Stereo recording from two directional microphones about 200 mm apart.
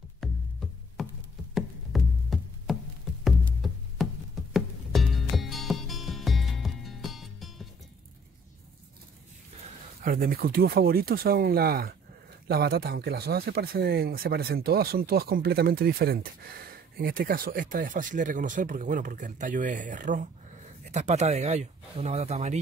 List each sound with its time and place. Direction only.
0.2 s music: centre (ahead or behind)
1.0 s a sound: centre (ahead or behind)
3.3 s music: centre (ahead or behind)
10.0 s speech: 45° right (ahead or behind)